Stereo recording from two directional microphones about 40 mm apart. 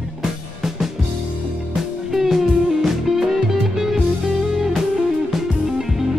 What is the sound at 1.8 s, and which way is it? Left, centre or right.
Music, centre.